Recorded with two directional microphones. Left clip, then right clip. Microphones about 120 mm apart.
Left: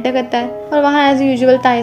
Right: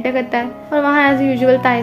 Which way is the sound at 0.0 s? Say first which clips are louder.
Left 2 dB; 20° left (ahead or behind).